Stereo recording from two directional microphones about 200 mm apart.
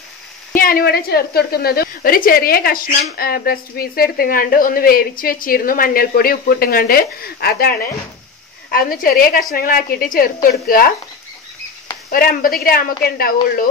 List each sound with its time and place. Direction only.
0.6 s a woman's voice: 45° left (ahead or behind)
12.1 s a woman's voice: 45° left (ahead or behind)